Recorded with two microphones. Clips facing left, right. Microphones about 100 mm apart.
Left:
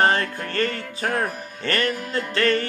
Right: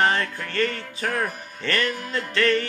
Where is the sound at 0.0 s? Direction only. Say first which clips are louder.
Left 2 dB; 40° left (ahead or behind).